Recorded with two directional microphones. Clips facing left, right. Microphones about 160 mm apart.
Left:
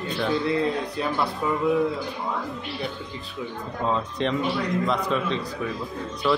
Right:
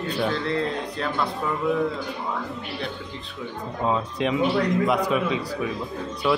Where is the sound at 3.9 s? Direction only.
5° right (ahead or behind).